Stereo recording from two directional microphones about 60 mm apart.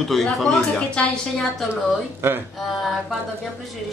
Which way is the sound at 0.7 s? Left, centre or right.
Centre.